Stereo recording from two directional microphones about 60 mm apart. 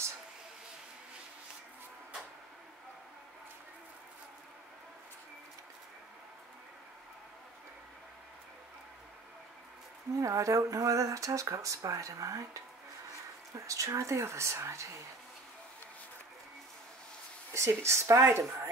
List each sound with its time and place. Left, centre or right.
10.1 s speech: right
13.7 s speech: right
17.5 s speech: right